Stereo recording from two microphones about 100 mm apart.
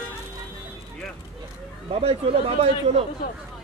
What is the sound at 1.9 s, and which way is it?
Speech, 85° right.